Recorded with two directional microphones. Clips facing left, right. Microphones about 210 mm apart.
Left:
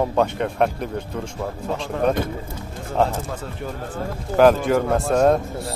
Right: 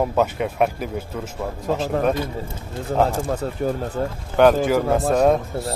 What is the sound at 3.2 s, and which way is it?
Speech, 40° right (ahead or behind).